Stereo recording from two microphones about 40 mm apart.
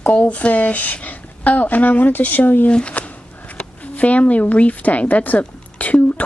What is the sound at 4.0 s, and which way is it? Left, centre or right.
A woman's voice, left.